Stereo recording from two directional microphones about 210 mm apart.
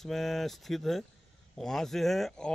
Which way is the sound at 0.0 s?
Centre (ahead or behind).